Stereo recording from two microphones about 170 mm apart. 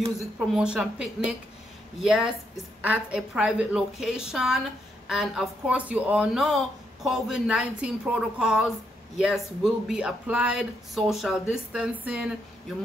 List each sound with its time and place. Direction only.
0.5 s speech: 5° right (ahead or behind)